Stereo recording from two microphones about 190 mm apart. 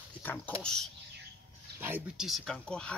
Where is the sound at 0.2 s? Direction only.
5° left (ahead or behind).